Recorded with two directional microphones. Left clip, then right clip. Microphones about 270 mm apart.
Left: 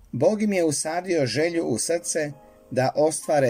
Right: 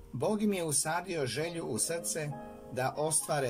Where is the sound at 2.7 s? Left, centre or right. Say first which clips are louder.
Left 11 dB; left.